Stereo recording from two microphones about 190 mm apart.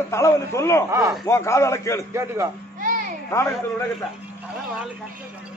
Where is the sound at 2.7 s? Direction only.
45° right (ahead or behind).